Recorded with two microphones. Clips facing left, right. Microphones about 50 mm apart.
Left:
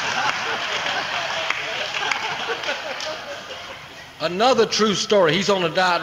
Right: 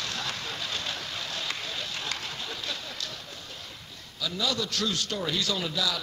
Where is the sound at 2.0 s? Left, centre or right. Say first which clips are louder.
Left 11 dB; left.